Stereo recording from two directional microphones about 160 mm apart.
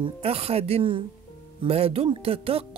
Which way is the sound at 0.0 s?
40° right (ahead or behind).